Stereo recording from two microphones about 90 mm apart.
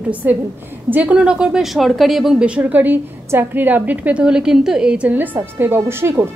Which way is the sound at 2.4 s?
15° right (ahead or behind).